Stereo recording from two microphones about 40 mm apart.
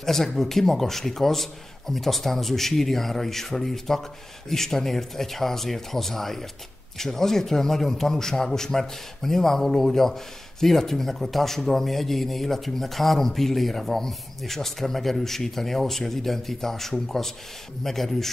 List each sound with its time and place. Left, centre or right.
0.0 s a man's voice: centre